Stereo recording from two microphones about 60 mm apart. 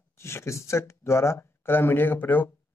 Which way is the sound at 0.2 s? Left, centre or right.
Left.